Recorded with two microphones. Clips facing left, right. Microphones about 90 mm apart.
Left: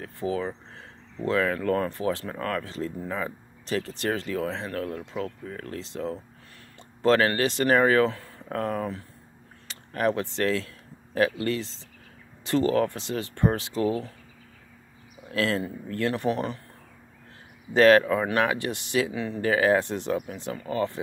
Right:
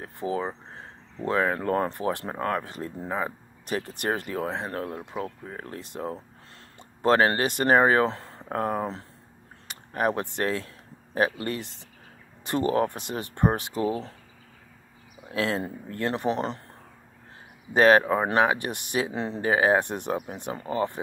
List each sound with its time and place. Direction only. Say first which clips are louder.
0.0 s speech: even; 30° right (ahead or behind)
3.6 s speech: left 1 dB; 15° right (ahead or behind)
4.3 s speech: even; 30° right (ahead or behind)
15.2 s speech: left 1 dB; 20° right (ahead or behind)
17.7 s speech: left 1 dB; 20° right (ahead or behind)